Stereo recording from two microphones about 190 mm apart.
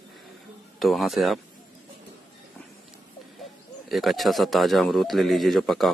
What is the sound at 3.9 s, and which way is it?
Speech, centre (ahead or behind).